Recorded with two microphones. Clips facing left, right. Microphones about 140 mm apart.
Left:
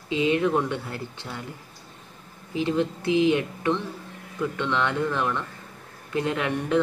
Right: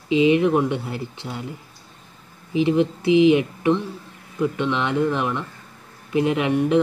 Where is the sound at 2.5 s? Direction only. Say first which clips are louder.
Right 6 dB; 15° right (ahead or behind).